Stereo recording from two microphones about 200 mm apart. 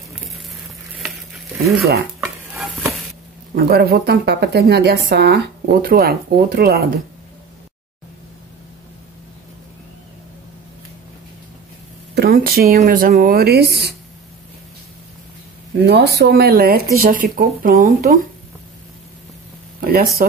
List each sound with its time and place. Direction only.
1.0 s frying: centre (ahead or behind)
2.1 s stir: 15° right (ahead or behind)
3.5 s speech: 50° right (ahead or behind)
12.2 s speech: 50° right (ahead or behind)
15.8 s speech: 55° right (ahead or behind)
19.8 s speech: 45° right (ahead or behind)